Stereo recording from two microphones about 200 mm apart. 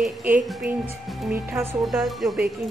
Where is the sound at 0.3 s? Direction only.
5° right (ahead or behind).